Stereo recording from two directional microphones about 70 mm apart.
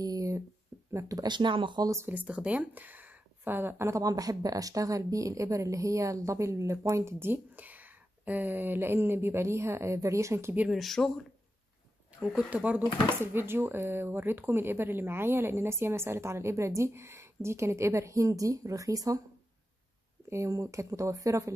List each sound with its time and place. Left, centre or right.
0.0 s a sound: right
0.7 s a sound: right
1.1 s speech: right
2.0 s speech: right
4.0 s speech: right
10.7 s speech: centre
12.4 s speech: right
13.1 s speech: right
20.2 s speech: right